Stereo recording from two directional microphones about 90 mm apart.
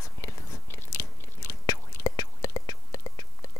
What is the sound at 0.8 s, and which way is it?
Chewing, 35° left (ahead or behind).